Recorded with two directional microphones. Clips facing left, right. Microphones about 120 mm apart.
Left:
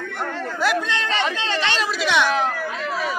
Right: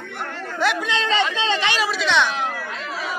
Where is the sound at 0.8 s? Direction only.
20° right (ahead or behind).